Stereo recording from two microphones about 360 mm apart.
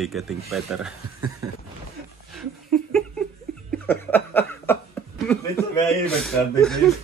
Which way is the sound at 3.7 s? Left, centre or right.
Centre.